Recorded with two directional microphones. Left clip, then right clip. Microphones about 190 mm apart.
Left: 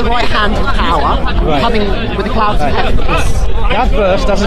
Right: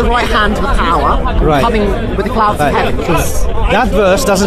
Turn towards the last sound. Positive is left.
turn(degrees=-50)  # may be behind; listen again after turning